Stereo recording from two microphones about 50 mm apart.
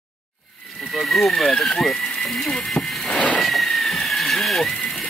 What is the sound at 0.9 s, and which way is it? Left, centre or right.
Speech, centre.